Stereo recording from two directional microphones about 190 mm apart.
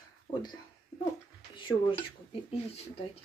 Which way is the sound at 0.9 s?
15° left (ahead or behind).